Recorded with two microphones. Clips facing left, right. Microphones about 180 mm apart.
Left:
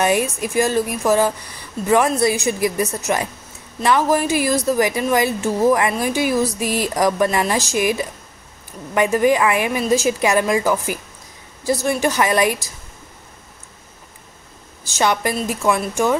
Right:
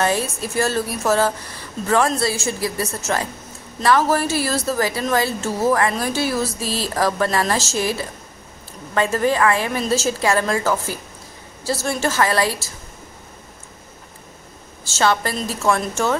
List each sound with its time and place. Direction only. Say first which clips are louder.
0.0 s a woman's voice: left 3 dB; 15° left (ahead or behind)
14.9 s a woman's voice: even; 15° left (ahead or behind)